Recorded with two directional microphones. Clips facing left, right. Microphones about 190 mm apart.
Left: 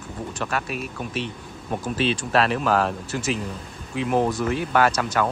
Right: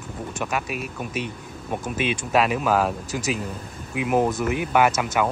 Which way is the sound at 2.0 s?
10° right (ahead or behind).